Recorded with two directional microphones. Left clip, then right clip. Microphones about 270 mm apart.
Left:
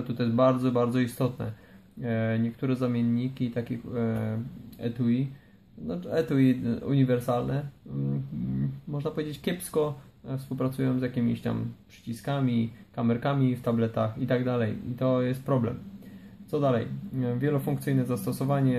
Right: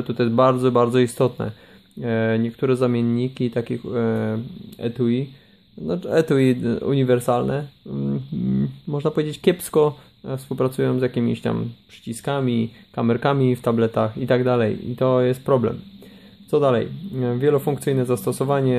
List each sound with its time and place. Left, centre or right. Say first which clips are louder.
0.1 s speech: right 7 dB; right
8.9 s speech: right 10 dB; right